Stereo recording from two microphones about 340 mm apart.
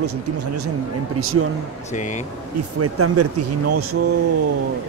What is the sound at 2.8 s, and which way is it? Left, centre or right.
Speech, right.